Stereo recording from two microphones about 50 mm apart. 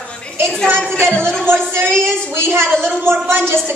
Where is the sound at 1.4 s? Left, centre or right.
Right.